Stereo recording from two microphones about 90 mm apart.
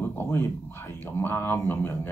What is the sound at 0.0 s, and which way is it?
Speech, 25° left (ahead or behind).